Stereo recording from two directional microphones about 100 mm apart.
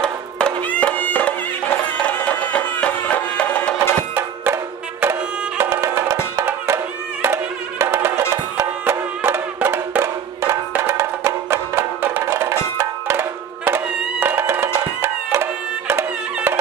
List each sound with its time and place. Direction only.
0.7 s music: 15° left (ahead or behind)
4.1 s music: 20° right (ahead or behind)
5.6 s music: 30° right (ahead or behind)